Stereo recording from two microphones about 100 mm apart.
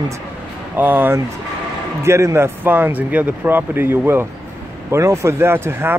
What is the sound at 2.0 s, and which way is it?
Speech, 30° right (ahead or behind).